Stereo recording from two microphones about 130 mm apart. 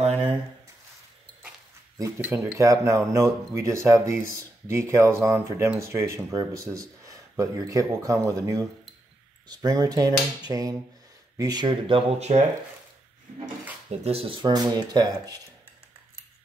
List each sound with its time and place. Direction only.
2.0 s speech: 20° right (ahead or behind)
12.1 s speech: 55° right (ahead or behind)
14.0 s speech: 45° right (ahead or behind); by 15.3 s 30° right (ahead or behind)